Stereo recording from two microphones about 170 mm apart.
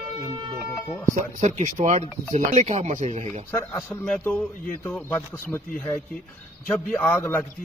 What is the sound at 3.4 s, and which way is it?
A man's voice, 15° left (ahead or behind).